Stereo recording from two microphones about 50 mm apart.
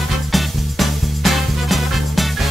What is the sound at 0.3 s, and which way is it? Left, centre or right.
Music, centre.